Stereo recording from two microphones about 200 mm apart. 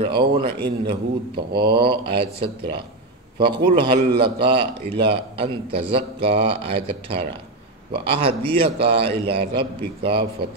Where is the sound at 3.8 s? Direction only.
25° right (ahead or behind).